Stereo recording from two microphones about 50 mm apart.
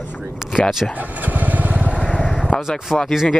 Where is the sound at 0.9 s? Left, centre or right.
Right.